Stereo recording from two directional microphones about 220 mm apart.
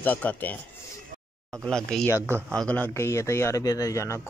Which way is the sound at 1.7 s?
5° left (ahead or behind).